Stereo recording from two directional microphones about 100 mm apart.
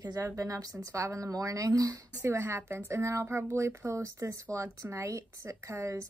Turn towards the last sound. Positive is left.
turn(degrees=-30)  # may be behind; listen again after turning